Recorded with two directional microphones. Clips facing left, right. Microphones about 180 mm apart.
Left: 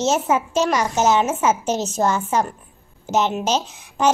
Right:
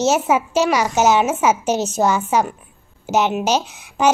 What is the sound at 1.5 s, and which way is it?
Speech, 70° right (ahead or behind).